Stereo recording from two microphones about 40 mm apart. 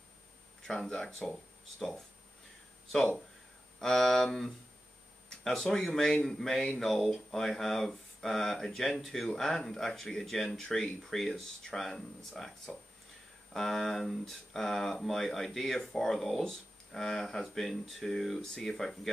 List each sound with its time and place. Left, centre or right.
0.6 s speech: centre
3.8 s speech: centre
5.4 s speech: centre